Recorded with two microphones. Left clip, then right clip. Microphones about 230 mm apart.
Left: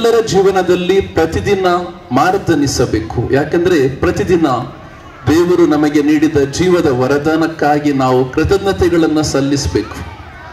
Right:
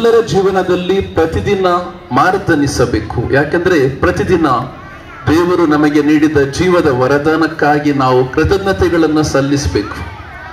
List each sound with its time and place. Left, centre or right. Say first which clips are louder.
0.0 s a man's voice: even; left